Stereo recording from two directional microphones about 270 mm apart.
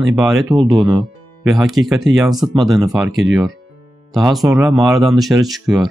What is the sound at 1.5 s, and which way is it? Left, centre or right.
Speech, centre.